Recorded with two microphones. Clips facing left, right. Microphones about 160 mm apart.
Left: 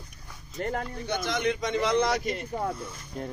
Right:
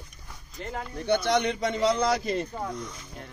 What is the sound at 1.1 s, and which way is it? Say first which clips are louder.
Speech: right 7 dB; 65° right (ahead or behind).